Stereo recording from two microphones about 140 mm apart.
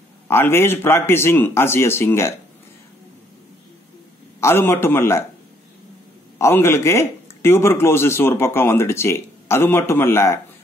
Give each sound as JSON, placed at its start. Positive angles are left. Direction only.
{"t": 0.3, "sound": "speech", "side_deg": 15}
{"t": 4.4, "sound": "speech", "side_deg": 15}
{"t": 6.3, "sound": "speech", "side_deg": 20}